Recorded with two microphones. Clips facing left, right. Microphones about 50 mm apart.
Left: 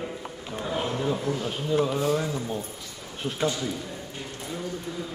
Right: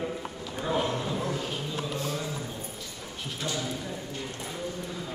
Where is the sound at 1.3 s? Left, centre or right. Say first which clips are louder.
Left 6 dB; left.